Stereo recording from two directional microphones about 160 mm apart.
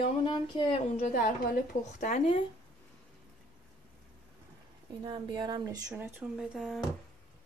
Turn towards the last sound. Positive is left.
turn(degrees=-5)  # may be behind; listen again after turning